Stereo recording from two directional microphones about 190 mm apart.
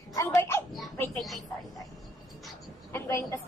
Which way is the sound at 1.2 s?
Centre (ahead or behind).